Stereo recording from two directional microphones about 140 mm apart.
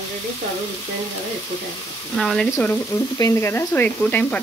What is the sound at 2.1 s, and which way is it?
Speech, 5° left (ahead or behind).